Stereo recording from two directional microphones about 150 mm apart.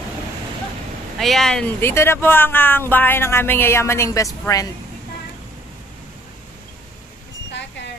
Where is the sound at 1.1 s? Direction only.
Centre (ahead or behind).